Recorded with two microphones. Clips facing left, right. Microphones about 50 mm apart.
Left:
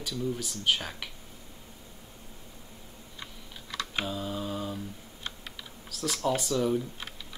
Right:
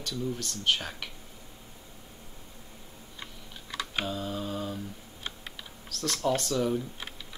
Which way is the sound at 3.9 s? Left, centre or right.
Centre.